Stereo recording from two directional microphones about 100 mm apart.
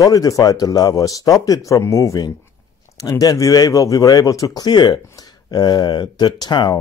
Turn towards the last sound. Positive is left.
turn(degrees=50)  # may be behind; listen again after turning